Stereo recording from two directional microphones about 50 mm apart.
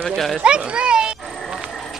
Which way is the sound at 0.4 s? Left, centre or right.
Right.